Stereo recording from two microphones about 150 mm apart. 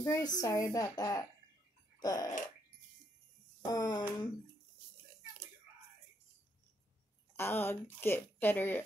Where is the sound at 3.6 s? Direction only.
25° left (ahead or behind).